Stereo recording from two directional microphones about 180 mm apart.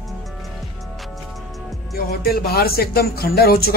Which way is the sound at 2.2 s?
60° left (ahead or behind).